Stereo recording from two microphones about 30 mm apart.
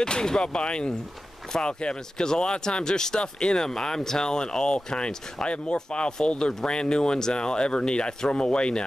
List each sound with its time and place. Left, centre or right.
0.0 s speech: left